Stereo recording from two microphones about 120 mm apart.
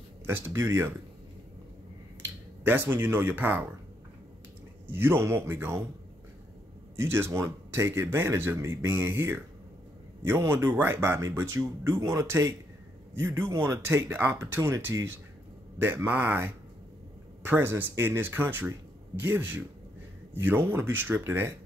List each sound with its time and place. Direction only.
0.3 s speech: 20° right (ahead or behind)
2.6 s speech: 15° right (ahead or behind)
4.8 s speech: 20° right (ahead or behind)
7.0 s speech: 20° right (ahead or behind)